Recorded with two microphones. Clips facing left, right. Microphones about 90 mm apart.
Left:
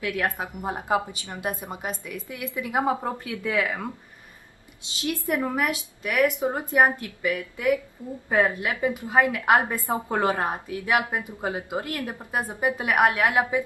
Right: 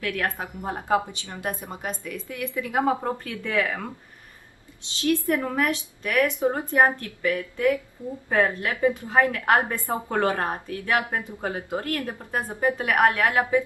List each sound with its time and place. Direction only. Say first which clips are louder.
0.0 s a woman's voice: left 1 dB; 15° left (ahead or behind)
5.0 s a woman's voice: right 3 dB; 15° left (ahead or behind)